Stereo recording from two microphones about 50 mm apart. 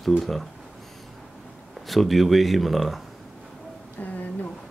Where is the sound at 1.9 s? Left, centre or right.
Centre.